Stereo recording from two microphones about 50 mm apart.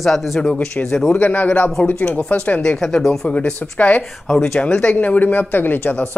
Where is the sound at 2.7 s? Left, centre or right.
Centre.